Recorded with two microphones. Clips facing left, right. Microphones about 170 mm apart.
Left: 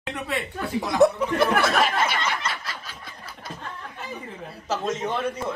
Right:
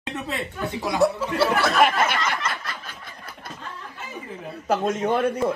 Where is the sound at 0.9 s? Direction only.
20° left (ahead or behind).